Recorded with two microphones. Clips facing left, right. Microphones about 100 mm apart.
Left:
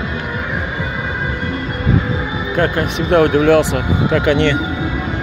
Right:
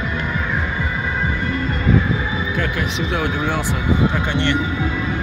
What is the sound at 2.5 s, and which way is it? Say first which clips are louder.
Speech: left 6 dB; 50° left (ahead or behind).